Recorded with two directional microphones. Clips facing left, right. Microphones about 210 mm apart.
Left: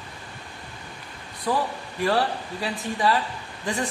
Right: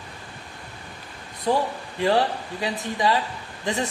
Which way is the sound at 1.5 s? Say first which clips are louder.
Right 3 dB; 25° right (ahead or behind).